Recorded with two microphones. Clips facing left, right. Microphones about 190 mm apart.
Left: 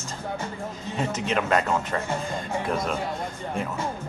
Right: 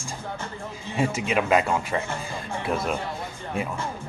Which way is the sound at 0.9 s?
10° right (ahead or behind).